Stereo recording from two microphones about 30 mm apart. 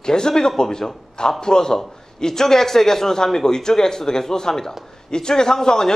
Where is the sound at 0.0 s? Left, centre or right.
Left.